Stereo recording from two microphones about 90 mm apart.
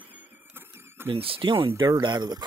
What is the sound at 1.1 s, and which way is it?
Speech, 90° right.